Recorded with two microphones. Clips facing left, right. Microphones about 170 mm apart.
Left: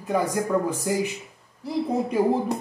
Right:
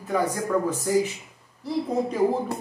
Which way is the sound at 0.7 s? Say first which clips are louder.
Right 2 dB; 15° left (ahead or behind).